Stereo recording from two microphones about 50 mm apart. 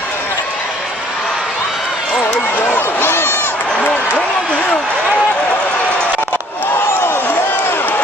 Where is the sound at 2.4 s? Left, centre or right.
Left.